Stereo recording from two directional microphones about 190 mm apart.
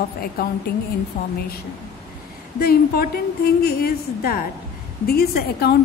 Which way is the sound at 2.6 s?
50° left (ahead or behind).